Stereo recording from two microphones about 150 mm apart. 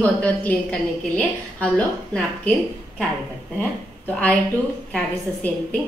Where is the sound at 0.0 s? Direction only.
10° left (ahead or behind).